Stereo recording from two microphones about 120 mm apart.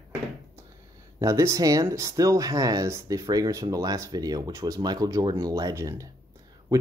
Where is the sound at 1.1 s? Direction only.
25° right (ahead or behind).